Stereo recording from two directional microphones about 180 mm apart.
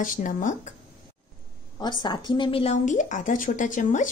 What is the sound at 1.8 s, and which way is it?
A woman's voice, 25° left (ahead or behind).